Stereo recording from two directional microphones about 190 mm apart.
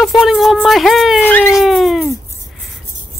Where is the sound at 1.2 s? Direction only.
10° left (ahead or behind).